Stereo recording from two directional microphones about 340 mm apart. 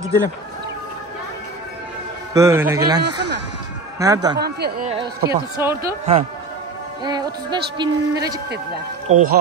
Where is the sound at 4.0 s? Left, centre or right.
Centre.